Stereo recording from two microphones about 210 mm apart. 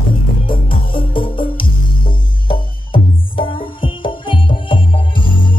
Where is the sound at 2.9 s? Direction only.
25° left (ahead or behind).